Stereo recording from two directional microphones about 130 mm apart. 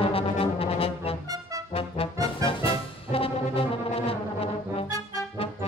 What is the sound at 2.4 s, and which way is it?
Brass instrument, 45° left (ahead or behind).